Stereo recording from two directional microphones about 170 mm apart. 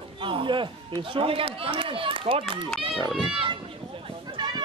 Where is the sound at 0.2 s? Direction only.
30° right (ahead or behind).